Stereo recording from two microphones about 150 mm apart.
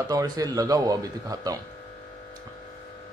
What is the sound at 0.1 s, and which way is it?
Speech, 25° right (ahead or behind).